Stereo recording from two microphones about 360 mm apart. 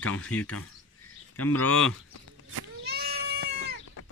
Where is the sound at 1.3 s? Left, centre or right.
Left.